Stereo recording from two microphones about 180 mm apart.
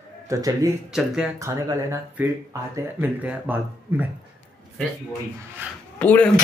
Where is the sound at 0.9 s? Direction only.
5° right (ahead or behind).